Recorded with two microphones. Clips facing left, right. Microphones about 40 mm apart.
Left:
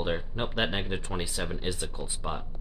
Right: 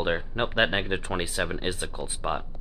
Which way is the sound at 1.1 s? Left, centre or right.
Right.